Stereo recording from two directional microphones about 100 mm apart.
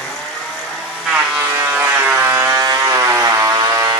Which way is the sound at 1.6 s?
20° right (ahead or behind).